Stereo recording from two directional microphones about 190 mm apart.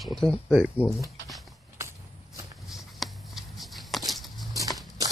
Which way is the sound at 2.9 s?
Centre (ahead or behind).